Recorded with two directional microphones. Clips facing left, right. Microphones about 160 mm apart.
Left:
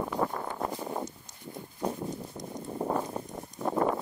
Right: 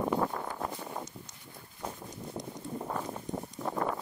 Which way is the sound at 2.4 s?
30° right (ahead or behind).